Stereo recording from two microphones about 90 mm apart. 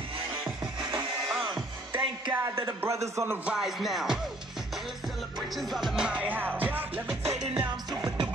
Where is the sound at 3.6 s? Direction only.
5° right (ahead or behind).